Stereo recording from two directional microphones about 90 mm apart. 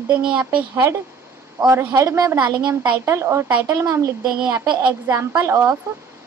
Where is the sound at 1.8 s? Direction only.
25° right (ahead or behind).